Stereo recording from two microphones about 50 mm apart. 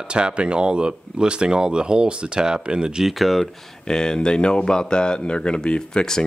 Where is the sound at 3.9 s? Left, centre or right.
Centre.